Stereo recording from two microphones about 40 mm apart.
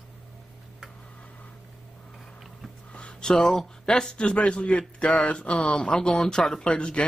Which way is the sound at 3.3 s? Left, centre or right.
Centre.